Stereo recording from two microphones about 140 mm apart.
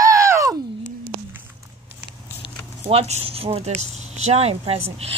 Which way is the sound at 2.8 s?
45° right (ahead or behind).